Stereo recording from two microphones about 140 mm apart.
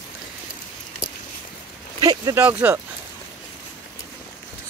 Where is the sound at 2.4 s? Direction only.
15° right (ahead or behind).